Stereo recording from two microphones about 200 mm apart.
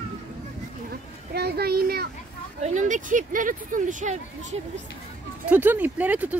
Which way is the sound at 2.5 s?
35° right (ahead or behind).